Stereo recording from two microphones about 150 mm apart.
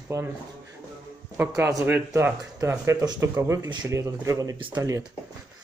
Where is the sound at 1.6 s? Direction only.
15° right (ahead or behind).